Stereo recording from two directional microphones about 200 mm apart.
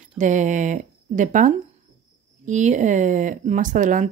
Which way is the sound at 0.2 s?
40° right (ahead or behind).